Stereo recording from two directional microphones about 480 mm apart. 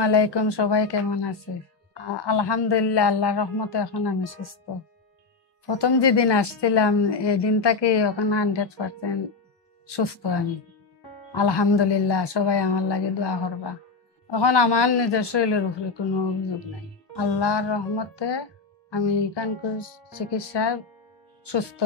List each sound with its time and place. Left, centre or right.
0.0 s a woman's voice: left
5.7 s a woman's voice: left
17.1 s speech: left